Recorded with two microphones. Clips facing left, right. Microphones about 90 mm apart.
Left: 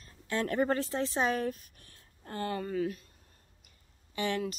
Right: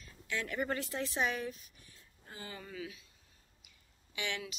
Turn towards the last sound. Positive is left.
turn(degrees=40)  # may be behind; listen again after turning